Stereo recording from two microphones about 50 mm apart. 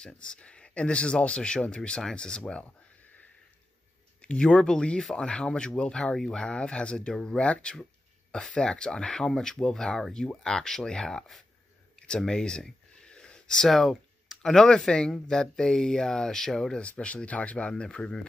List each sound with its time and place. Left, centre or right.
0.0 s speech: centre
4.2 s speech: centre
12.2 s a sound: centre
13.7 s speech: centre
16.8 s speech: left